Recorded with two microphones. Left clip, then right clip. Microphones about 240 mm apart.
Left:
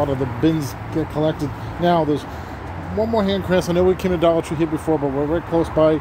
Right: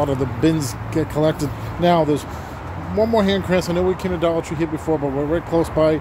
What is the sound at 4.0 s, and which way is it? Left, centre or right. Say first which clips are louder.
Speech: left 3 dB; left.